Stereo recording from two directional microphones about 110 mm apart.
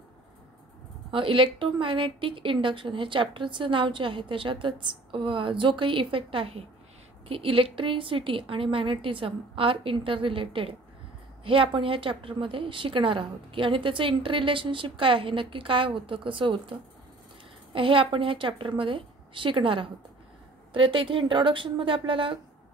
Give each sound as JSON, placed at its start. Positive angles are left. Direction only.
{"t": 1.1, "sound": "a woman's voice", "side_deg": -50}
{"t": 17.7, "sound": "a woman's voice", "side_deg": -50}